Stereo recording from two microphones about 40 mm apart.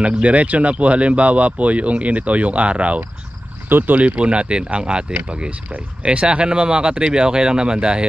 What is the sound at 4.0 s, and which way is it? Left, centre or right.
Speech, right.